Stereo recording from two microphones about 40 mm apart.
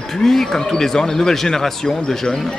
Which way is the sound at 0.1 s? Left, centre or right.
Centre.